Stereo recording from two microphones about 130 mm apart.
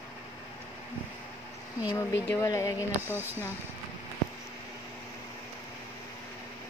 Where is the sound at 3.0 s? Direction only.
15° right (ahead or behind).